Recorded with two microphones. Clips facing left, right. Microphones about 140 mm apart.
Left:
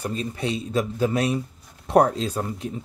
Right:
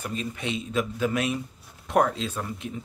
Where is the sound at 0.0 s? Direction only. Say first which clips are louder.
Left 4 dB; 35° left (ahead or behind).